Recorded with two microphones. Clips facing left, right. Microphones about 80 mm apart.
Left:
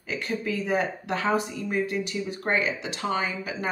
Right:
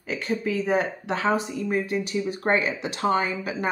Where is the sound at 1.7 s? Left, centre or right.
Right.